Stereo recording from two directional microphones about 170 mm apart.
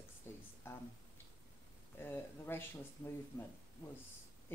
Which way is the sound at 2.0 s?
15° left (ahead or behind).